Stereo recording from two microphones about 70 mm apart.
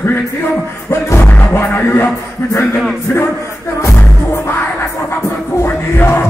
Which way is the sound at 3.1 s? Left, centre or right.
Left.